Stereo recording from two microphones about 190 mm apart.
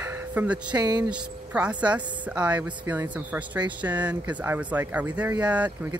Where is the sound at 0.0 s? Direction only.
10° right (ahead or behind).